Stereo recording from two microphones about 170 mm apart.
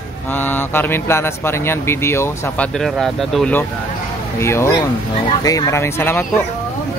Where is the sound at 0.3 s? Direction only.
10° left (ahead or behind).